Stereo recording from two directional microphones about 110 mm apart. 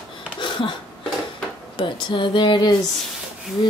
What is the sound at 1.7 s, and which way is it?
Speech, 45° left (ahead or behind).